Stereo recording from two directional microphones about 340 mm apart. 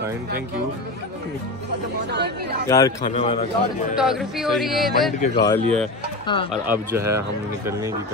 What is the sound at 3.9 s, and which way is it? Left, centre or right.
Speech, centre.